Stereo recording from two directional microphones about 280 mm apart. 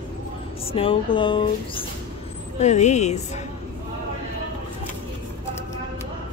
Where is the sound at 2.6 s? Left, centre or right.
Left.